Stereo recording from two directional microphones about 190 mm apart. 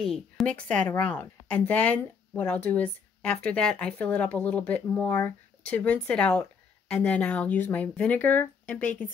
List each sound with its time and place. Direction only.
0.1 s a woman's voice: 5° left (ahead or behind)